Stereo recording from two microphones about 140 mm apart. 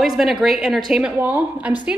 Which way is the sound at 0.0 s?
Centre (ahead or behind).